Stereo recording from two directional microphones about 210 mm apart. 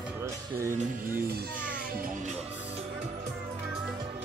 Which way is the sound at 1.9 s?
40° right (ahead or behind).